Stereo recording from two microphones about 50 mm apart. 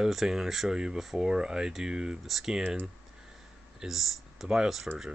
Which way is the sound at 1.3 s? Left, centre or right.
Centre.